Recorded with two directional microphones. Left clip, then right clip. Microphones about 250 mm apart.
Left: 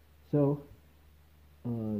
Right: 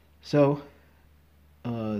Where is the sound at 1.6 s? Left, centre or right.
Right.